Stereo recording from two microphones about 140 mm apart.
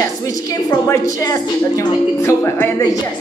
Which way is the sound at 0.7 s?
25° left (ahead or behind).